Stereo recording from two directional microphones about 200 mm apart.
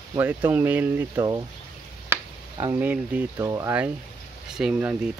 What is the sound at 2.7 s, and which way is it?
Speech, 5° right (ahead or behind).